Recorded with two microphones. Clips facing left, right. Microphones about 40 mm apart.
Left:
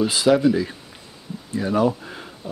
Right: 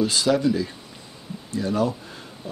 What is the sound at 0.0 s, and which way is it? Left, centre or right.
Speech, centre.